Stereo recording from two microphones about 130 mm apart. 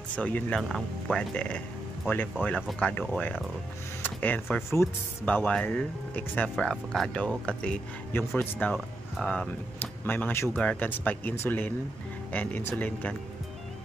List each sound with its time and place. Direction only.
0.1 s speech: 10° left (ahead or behind)
2.8 s speech: 5° left (ahead or behind)